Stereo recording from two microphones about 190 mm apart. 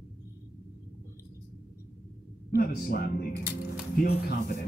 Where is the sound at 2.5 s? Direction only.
50° left (ahead or behind).